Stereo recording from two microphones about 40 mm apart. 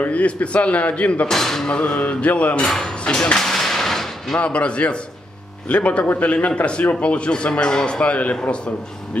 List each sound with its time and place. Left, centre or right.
0.0 s a man's voice: left
1.3 s speech: centre
1.7 s a man's voice: left
3.3 s gunshot: centre
4.4 s a man's voice: left